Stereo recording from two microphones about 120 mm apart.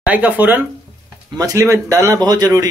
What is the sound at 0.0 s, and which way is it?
Speech, 10° right (ahead or behind).